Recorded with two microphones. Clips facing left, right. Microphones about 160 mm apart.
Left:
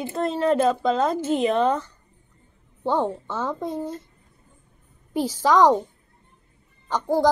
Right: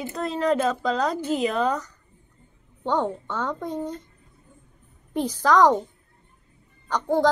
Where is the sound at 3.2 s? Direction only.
5° left (ahead or behind).